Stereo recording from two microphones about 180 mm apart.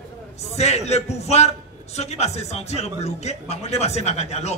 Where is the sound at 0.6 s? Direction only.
35° left (ahead or behind).